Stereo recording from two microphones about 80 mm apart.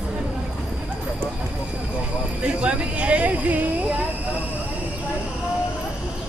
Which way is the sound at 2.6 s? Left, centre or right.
Centre.